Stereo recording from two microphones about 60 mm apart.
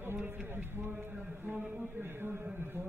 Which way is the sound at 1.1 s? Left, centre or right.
Right.